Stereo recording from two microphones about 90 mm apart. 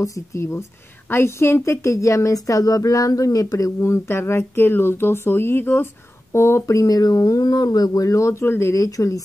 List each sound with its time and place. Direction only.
0.0 s a woman's voice: 35° left (ahead or behind)